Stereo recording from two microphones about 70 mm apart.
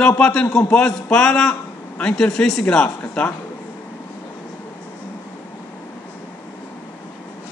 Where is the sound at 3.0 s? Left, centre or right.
Left.